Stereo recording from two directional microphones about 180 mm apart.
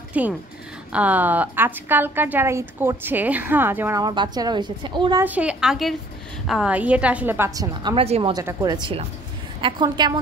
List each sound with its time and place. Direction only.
0.1 s a woman's voice: 10° right (ahead or behind)
4.0 s a woman's voice: 25° right (ahead or behind)
5.2 s a woman's voice: 10° right (ahead or behind)
7.9 s a woman's voice: 30° right (ahead or behind)